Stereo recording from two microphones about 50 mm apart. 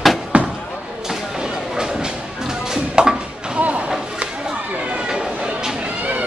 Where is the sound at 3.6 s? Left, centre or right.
Right.